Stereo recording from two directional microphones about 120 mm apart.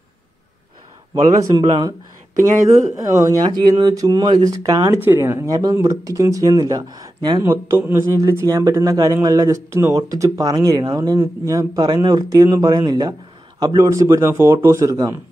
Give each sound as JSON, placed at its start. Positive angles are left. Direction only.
{"t": 1.3, "sound": "speech", "side_deg": -30}
{"t": 3.0, "sound": "speech", "side_deg": -30}
{"t": 7.7, "sound": "speech", "side_deg": -20}